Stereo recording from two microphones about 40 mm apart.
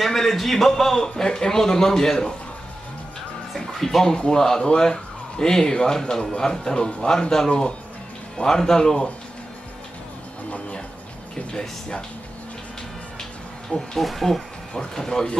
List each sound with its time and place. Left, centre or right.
0.0 s a man's voice: centre
3.5 s music: centre
4.2 s a man's voice: centre
13.2 s a sound: centre
14.0 s speech: centre
15.0 s a man's voice: centre